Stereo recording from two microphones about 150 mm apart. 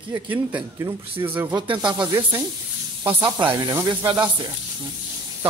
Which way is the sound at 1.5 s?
30° right (ahead or behind).